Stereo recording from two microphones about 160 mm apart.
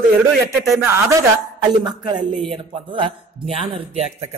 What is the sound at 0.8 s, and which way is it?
Speech, 15° right (ahead or behind).